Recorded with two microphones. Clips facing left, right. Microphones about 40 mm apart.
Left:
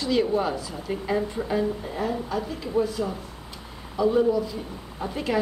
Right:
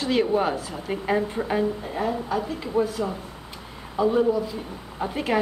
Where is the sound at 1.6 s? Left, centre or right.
Centre.